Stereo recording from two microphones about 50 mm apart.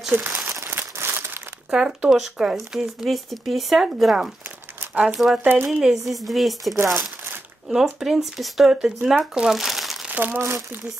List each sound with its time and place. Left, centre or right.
0.1 s speech: right
0.5 s crumpling: right
1.7 s speech: centre
3.1 s speech: centre
7.7 s speech: centre
9.5 s crumpling: centre
10.0 s speech: right